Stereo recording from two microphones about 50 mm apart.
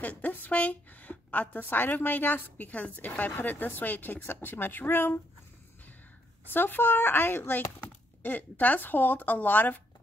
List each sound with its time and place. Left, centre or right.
0.0 s a woman's voice: left
1.7 s a woman's voice: left
6.5 s a woman's voice: left
8.2 s a woman's voice: left